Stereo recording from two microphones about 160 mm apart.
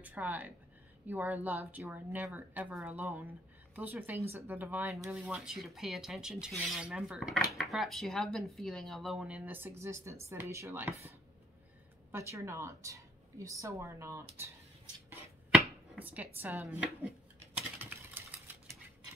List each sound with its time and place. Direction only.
0.0 s speech: 10° right (ahead or behind)
16.0 s speech: 10° right (ahead or behind)
17.6 s typing: 10° right (ahead or behind)